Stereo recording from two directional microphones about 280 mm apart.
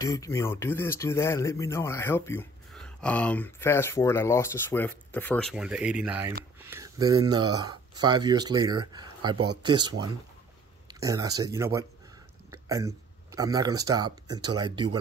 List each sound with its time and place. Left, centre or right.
0.0 s speech: centre